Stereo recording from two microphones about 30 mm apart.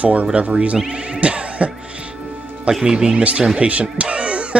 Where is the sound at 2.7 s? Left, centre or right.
Centre.